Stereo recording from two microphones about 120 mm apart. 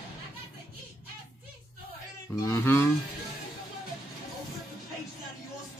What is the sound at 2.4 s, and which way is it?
Speech, 20° left (ahead or behind).